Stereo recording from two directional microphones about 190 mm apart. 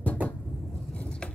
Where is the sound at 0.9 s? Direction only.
5° left (ahead or behind).